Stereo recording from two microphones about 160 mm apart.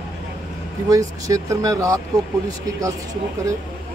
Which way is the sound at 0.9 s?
20° right (ahead or behind).